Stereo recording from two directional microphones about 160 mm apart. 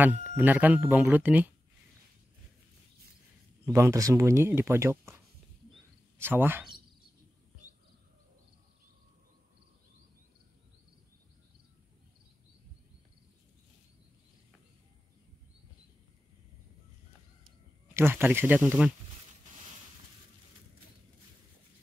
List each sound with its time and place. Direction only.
0.0 s speech: 10° right (ahead or behind)
3.7 s speech: 20° right (ahead or behind)
17.9 s speech: 15° right (ahead or behind)